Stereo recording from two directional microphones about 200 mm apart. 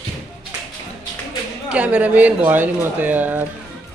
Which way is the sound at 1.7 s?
5° right (ahead or behind).